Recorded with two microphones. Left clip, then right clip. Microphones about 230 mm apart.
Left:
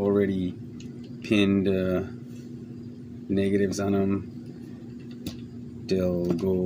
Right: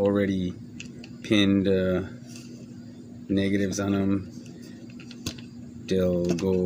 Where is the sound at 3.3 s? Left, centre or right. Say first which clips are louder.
Left 1 dB; centre.